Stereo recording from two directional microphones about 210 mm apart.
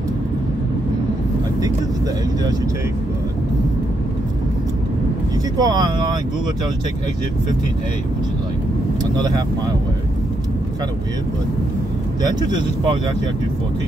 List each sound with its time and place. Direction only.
5.6 s speech: 20° right (ahead or behind)
9.1 s speech: 20° right (ahead or behind)
12.2 s speech: 20° right (ahead or behind)